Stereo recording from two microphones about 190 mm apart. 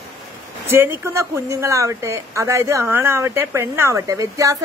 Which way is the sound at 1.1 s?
15° right (ahead or behind).